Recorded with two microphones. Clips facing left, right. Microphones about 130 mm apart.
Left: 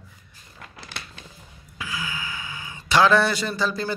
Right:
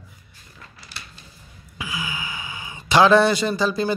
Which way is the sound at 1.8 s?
15° right (ahead or behind).